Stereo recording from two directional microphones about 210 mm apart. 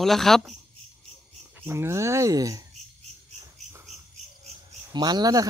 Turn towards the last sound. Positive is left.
turn(degrees=-20)  # may be behind; listen again after turning